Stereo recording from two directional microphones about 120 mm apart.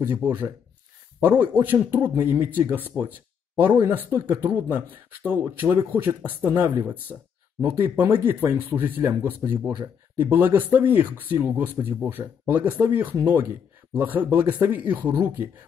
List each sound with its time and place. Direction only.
0.0 s speech: 15° right (ahead or behind)